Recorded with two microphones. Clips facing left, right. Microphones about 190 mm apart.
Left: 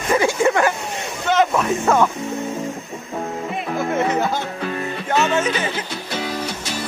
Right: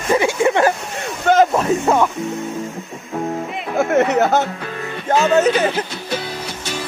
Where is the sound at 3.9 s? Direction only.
70° right (ahead or behind).